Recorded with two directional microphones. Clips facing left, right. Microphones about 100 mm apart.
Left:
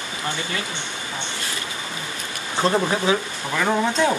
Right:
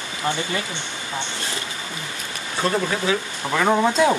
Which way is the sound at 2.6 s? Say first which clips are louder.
Left 2 dB; 25° left (ahead or behind).